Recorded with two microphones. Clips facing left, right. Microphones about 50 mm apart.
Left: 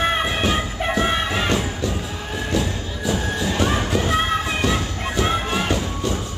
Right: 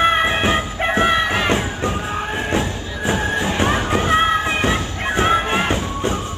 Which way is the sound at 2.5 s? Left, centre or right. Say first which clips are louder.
Right 2 dB; right.